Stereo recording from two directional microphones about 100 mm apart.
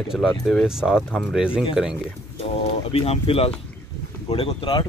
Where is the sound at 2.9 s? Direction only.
75° left (ahead or behind).